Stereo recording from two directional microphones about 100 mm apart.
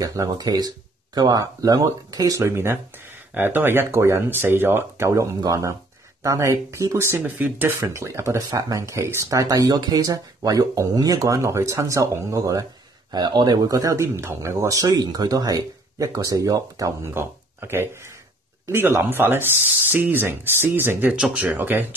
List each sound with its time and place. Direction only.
0.0 s speech: 35° right (ahead or behind); by 7.7 s 20° right (ahead or behind)
7.8 s speech: 30° right (ahead or behind)
13.1 s speech: 45° right (ahead or behind)
17.1 s speech: 20° right (ahead or behind)